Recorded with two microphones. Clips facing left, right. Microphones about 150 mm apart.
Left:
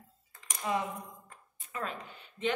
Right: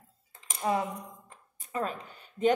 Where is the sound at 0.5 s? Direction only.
35° right (ahead or behind).